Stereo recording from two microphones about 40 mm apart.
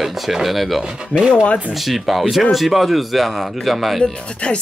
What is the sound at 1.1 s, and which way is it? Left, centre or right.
Speech, left.